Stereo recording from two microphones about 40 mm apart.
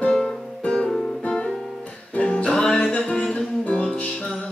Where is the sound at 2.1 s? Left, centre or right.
Left.